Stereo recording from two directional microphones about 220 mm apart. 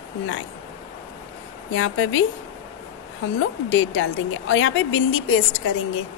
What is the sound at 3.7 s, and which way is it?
A woman's voice, 60° left (ahead or behind).